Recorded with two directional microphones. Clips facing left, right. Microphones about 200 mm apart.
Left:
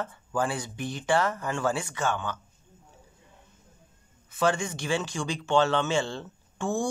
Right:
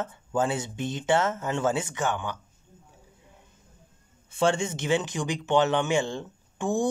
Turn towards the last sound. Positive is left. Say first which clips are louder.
# right 3 dB
turn(degrees=-15)  # may be behind; listen again after turning